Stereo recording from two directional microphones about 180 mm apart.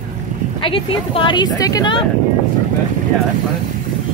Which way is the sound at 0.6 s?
30° left (ahead or behind).